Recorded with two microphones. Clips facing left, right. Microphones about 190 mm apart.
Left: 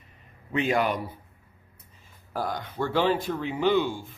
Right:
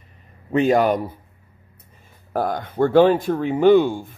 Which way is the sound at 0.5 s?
40° right (ahead or behind).